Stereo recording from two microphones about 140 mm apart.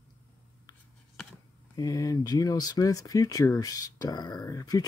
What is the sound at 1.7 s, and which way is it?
Speech, 25° left (ahead or behind).